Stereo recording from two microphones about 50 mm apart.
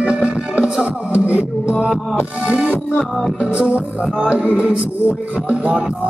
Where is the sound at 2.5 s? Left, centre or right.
Right.